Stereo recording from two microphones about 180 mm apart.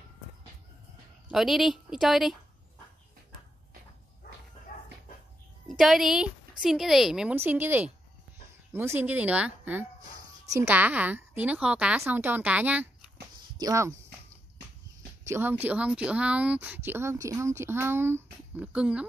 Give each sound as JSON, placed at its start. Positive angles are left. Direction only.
{"t": 1.3, "sound": "a woman's voice", "side_deg": 0}
{"t": 5.7, "sound": "a woman's voice", "side_deg": 0}
{"t": 15.2, "sound": "speech", "side_deg": -10}